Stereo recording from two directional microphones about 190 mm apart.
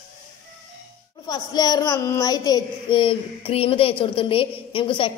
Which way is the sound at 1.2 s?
20° left (ahead or behind).